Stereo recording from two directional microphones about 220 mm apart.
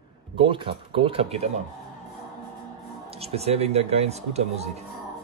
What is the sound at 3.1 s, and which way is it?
Speech, 25° right (ahead or behind).